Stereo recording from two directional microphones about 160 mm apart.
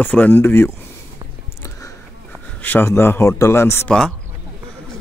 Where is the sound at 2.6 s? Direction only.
15° left (ahead or behind).